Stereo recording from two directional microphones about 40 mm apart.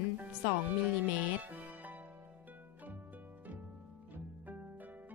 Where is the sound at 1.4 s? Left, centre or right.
Right.